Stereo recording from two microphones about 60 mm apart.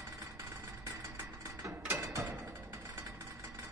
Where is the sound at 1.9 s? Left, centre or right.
Right.